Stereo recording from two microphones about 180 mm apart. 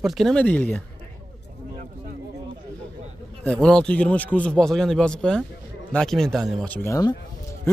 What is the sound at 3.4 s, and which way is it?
Speech, 5° left (ahead or behind).